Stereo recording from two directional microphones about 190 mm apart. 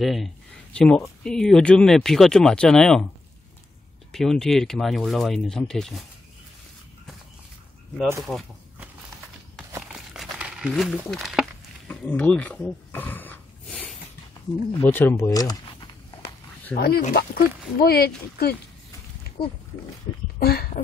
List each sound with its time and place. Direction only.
0.0 s speech: centre (ahead or behind)
4.1 s speech: centre (ahead or behind)
8.2 s speech: centre (ahead or behind)
9.9 s crumpling: centre (ahead or behind)
11.9 s a sound: 10° left (ahead or behind)
14.8 s speech: 10° left (ahead or behind)
16.7 s speech: 55° left (ahead or behind)
20.3 s speech: 55° left (ahead or behind)